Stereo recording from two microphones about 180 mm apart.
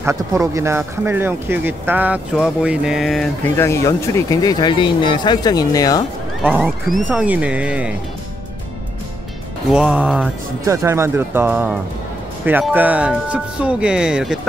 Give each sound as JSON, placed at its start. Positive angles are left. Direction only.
{"t": 0.0, "sound": "speech", "side_deg": -15}
{"t": 3.4, "sound": "speech", "side_deg": 15}
{"t": 6.4, "sound": "speech", "side_deg": -5}
{"t": 9.7, "sound": "speech", "side_deg": -5}